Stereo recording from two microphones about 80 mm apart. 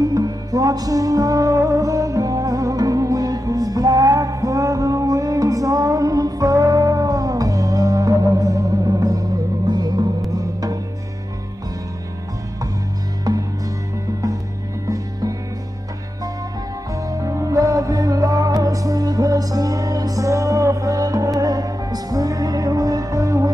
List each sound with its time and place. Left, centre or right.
0.0 s music: right
13.3 s music: right
14.9 s music: right
16.9 s music: right